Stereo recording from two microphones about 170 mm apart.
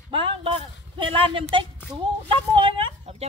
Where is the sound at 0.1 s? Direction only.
30° right (ahead or behind).